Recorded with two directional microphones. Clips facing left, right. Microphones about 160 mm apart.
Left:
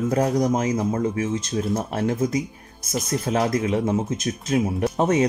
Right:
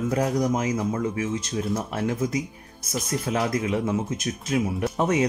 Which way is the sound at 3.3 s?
35° left (ahead or behind).